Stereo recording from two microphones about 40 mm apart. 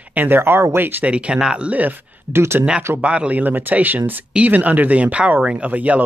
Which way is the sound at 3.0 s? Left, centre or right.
Right.